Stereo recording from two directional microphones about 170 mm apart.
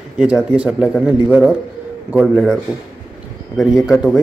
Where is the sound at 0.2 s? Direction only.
5° right (ahead or behind).